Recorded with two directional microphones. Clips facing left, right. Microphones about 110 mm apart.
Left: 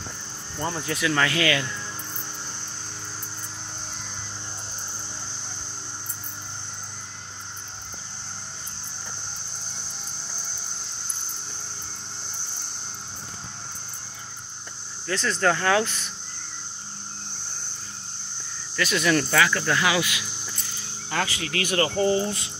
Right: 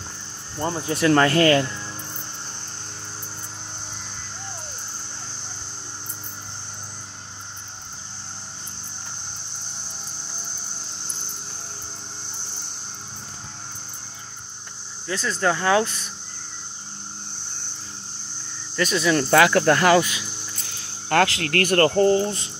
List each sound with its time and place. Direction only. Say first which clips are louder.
0.6 s speech: right 3 dB; 25° right (ahead or behind)
0.9 s speech: right 8 dB; 40° right (ahead or behind)
15.0 s speech: even; 15° right (ahead or behind)
18.9 s speech: right 1 dB; 20° right (ahead or behind)
19.3 s speech: right 6 dB; 60° right (ahead or behind)
20.8 s speech: right 9 dB; 65° right (ahead or behind); by 22.5 s 35° right (ahead or behind)